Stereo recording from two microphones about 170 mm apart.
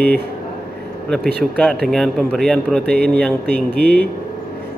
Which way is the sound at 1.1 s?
5° left (ahead or behind).